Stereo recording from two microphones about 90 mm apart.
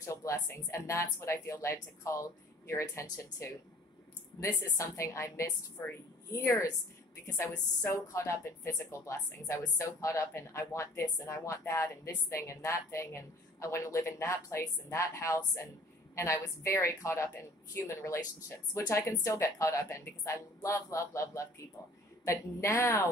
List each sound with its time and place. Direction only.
0.0 s a woman's voice: 35° left (ahead or behind)